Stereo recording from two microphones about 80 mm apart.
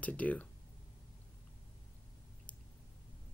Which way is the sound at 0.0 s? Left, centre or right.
Centre.